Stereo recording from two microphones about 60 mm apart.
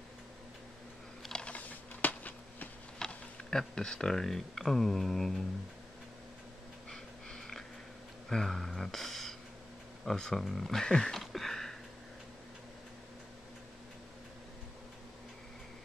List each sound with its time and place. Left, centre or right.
1.3 s typing: left
3.1 s speech: centre
6.9 s a sound: centre
8.3 s speech: centre